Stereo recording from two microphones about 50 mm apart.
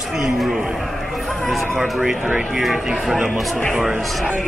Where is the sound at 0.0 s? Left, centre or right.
Centre.